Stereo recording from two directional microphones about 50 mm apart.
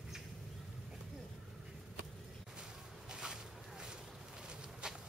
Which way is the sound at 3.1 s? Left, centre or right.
Centre.